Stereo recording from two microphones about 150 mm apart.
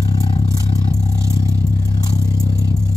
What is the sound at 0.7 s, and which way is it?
Vehicle, 40° left (ahead or behind).